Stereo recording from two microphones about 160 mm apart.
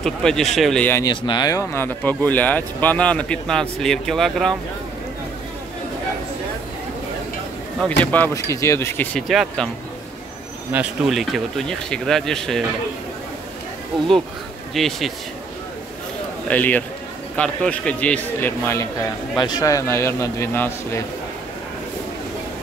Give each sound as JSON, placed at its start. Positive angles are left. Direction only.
{"t": 0.0, "sound": "speech", "side_deg": 5}
{"t": 1.0, "sound": "speech", "side_deg": 25}
{"t": 8.0, "sound": "speech", "side_deg": 10}
{"t": 9.3, "sound": "speech", "side_deg": 0}
{"t": 10.7, "sound": "speech", "side_deg": -5}
{"t": 14.7, "sound": "speech", "side_deg": 0}
{"t": 16.4, "sound": "speech", "side_deg": 10}
{"t": 19.4, "sound": "speech", "side_deg": 25}